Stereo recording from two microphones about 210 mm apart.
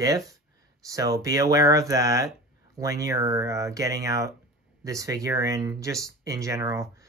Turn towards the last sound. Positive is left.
turn(degrees=-15)  # may be behind; listen again after turning